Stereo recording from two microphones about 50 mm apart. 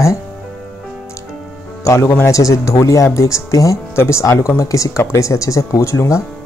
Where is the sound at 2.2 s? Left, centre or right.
Left.